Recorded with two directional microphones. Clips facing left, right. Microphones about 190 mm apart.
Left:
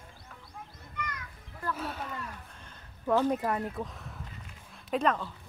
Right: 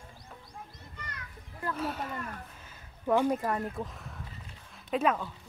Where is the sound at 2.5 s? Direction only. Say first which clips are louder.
Even; 5° right (ahead or behind).